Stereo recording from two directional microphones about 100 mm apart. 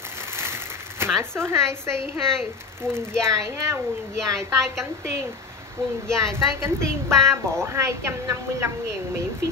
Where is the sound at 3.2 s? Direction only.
30° right (ahead or behind).